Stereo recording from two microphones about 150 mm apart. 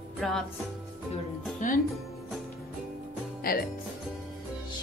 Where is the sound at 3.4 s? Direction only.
80° left.